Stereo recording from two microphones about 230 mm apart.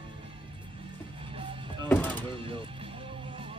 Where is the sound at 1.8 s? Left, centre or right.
Centre.